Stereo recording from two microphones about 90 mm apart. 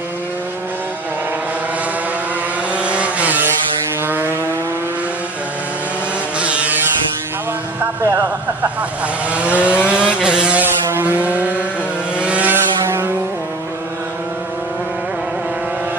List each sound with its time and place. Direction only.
2.7 s vehicle: 15° right (ahead or behind)
6.4 s vehicle: 15° right (ahead or behind)
8.0 s a sound: 25° right (ahead or behind)
9.3 s vehicle: 15° right (ahead or behind)